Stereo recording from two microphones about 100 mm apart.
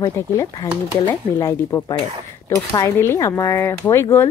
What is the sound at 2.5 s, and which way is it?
Speech, 35° left (ahead or behind).